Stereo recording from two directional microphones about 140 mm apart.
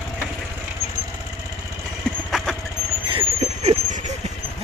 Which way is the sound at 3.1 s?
45° right (ahead or behind).